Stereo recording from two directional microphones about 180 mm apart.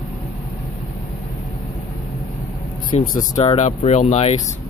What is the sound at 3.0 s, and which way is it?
Speech, 50° left (ahead or behind).